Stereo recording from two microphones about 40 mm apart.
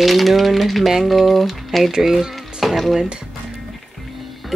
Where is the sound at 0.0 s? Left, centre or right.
Centre.